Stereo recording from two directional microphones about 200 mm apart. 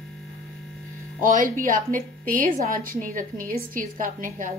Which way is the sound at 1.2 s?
40° right (ahead or behind).